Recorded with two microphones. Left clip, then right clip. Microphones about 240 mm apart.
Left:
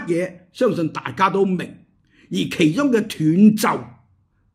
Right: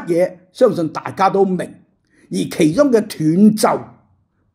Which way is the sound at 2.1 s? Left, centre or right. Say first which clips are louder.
Right 2 dB; centre.